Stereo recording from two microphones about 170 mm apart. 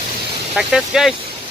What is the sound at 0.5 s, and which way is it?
Speech, 5° right (ahead or behind).